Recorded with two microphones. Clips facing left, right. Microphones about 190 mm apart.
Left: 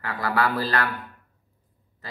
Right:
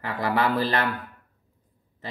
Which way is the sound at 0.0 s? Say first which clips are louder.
Right 1 dB; 20° right (ahead or behind).